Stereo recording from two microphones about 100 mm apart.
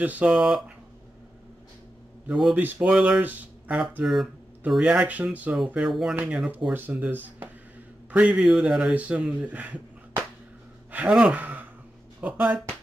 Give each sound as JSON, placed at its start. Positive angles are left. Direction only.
{"t": 0.0, "sound": "speech", "side_deg": -15}
{"t": 2.2, "sound": "a man's voice", "side_deg": -5}
{"t": 2.5, "sound": "speech", "side_deg": -15}
{"t": 4.0, "sound": "speech", "side_deg": 0}
{"t": 5.9, "sound": "speech", "side_deg": 0}
{"t": 6.1, "sound": "speech", "side_deg": -15}
{"t": 10.9, "sound": "speech", "side_deg": -15}